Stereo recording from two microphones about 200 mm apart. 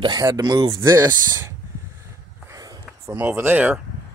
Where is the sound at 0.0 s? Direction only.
20° right (ahead or behind).